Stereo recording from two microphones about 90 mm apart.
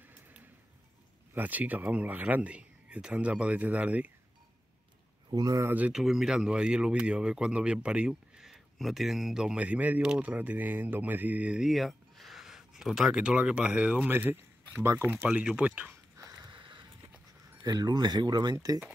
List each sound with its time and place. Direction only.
1.3 s speech: 20° right (ahead or behind)
5.3 s speech: 40° right (ahead or behind)
5.7 s speech: 15° right (ahead or behind)
5.9 s speech: 5° right (ahead or behind)
11.7 s speech: centre (ahead or behind); by 15.0 s 30° right (ahead or behind)
15.3 s speech: 15° right (ahead or behind)
16.2 s a sound: 45° right (ahead or behind)
16.5 s a sound: 60° right (ahead or behind)
17.6 s speech: 50° right (ahead or behind)